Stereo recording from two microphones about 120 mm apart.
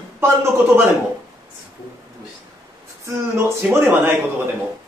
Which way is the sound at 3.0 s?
25° right (ahead or behind).